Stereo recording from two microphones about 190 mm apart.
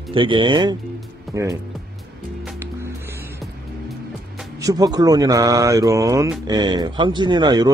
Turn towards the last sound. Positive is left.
turn(degrees=-20)  # may be behind; listen again after turning